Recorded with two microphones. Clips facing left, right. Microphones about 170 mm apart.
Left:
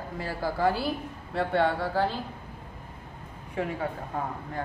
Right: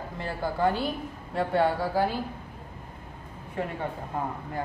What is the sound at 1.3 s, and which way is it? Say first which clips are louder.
Speech: right 1 dB; 10° right (ahead or behind).